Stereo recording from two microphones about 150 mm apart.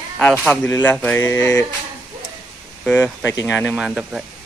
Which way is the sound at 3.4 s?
5° right (ahead or behind).